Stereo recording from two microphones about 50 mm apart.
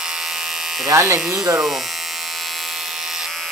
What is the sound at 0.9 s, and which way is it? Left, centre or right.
Speech, right.